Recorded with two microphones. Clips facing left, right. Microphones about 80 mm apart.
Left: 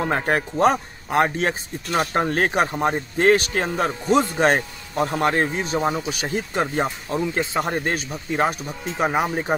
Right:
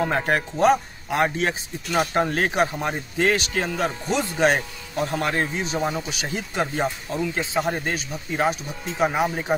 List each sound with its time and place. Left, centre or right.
0.1 s speech: left